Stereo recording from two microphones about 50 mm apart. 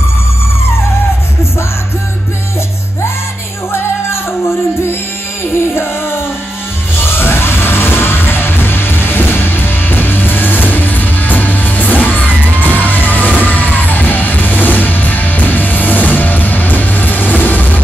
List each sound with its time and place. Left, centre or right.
5.8 s music: left